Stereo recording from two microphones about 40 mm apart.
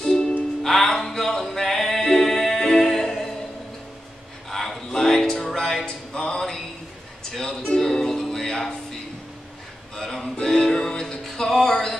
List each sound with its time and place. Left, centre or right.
0.0 s music: centre
4.5 s music: centre
5.9 s a sound: left
7.2 s ukulele: centre
9.9 s music: centre
11.6 s a sound: centre